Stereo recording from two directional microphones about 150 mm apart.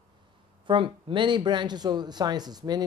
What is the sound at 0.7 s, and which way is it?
A man's voice, 35° right (ahead or behind).